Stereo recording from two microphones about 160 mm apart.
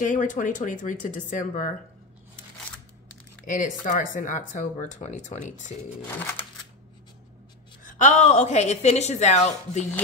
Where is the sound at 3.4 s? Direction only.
55° left (ahead or behind).